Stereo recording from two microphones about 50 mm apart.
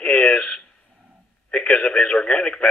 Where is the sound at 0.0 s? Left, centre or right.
Left.